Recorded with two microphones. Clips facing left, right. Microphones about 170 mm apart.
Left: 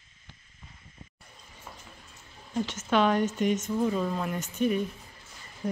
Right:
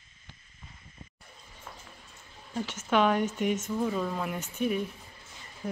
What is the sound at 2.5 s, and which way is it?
Speech, 10° right (ahead or behind).